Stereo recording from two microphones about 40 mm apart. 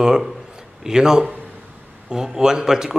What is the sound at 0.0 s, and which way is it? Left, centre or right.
A man's voice, centre.